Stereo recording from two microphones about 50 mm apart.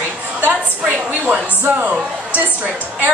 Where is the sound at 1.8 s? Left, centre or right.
Right.